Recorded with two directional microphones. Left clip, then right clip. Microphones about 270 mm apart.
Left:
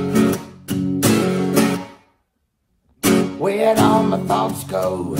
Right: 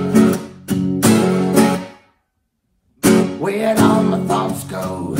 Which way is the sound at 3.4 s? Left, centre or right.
Left.